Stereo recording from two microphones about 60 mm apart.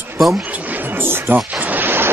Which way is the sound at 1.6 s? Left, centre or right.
Right.